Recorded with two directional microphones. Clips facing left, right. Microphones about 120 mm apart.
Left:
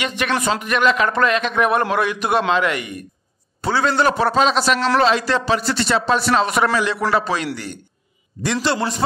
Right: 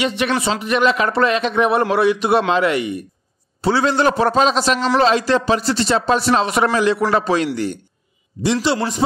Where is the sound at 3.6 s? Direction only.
30° right (ahead or behind).